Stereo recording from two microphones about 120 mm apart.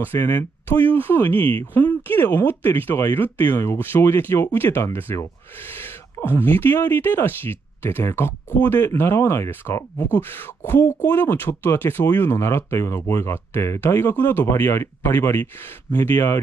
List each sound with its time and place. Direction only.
0.0 s speech: 15° left (ahead or behind)